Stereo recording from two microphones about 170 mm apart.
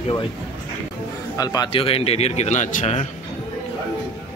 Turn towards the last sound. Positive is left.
turn(degrees=40)  # may be behind; listen again after turning